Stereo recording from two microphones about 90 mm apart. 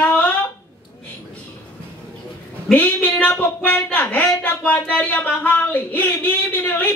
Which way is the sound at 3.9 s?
20° left (ahead or behind).